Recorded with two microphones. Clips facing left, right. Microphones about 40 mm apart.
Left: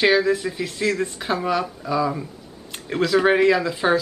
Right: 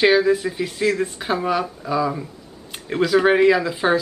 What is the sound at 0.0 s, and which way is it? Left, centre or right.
Speech, centre.